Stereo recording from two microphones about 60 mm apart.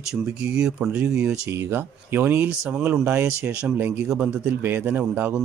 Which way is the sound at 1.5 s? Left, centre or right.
Right.